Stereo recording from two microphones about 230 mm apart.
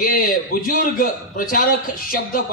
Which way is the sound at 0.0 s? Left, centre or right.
Left.